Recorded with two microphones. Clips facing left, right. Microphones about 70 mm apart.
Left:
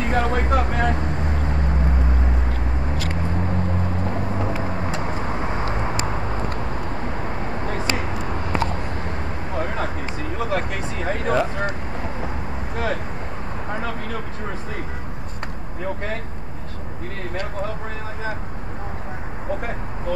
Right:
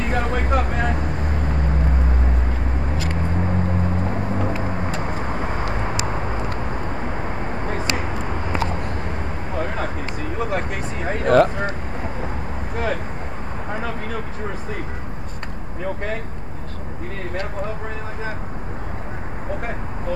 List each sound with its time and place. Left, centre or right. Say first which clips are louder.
0.0 s vehicle: left 1 dB; centre
3.2 s vehicle: right 3 dB; centre
11.2 s vehicle: right 7 dB; right
11.5 s vehicle: even; centre